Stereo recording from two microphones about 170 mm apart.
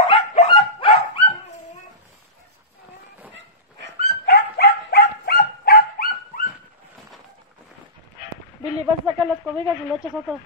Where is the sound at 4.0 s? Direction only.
65° left (ahead or behind).